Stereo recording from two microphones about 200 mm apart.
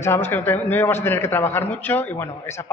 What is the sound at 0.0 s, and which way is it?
A man's voice, 10° left (ahead or behind).